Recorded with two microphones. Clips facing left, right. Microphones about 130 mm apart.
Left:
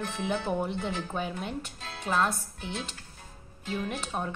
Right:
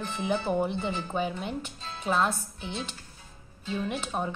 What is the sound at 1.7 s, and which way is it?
Music, 65° left (ahead or behind).